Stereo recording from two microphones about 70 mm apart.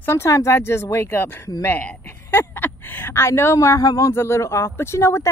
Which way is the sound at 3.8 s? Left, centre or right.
Left.